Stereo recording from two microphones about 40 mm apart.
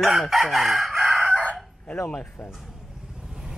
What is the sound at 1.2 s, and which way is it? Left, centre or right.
Crowing, right.